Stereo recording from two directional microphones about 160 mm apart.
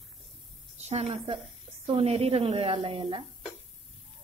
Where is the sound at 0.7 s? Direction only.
40° right (ahead or behind).